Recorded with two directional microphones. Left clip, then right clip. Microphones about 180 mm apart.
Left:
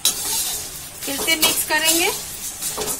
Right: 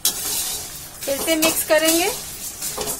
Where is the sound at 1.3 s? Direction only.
70° right (ahead or behind).